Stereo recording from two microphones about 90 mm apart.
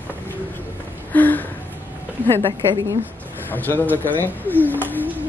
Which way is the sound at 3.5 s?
20° left (ahead or behind).